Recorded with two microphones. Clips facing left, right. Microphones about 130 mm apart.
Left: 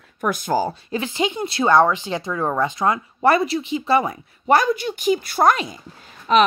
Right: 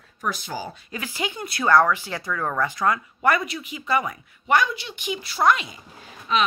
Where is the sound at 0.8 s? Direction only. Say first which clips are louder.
Left 7 dB; 25° left (ahead or behind); by 5.8 s 40° left (ahead or behind).